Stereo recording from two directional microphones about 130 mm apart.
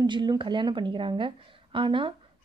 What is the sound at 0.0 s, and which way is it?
A woman's voice, 35° right (ahead or behind).